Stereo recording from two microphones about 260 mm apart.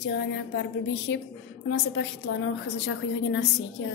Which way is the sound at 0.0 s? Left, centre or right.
Left.